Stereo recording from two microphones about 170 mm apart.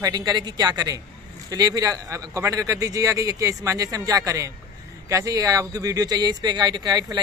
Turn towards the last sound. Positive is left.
turn(degrees=-25)  # may be behind; listen again after turning